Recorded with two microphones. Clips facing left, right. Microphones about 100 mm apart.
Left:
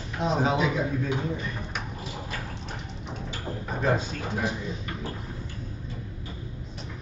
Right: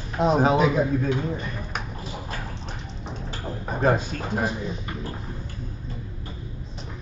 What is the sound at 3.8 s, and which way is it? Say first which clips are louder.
Speech: right 4 dB; 45° right (ahead or behind).